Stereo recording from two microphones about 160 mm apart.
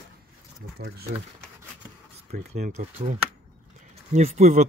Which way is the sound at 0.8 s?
80° right.